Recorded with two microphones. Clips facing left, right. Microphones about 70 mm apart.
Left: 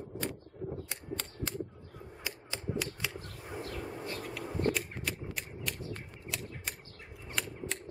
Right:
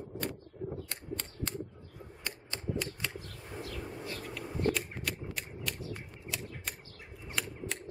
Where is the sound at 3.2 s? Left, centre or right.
Left.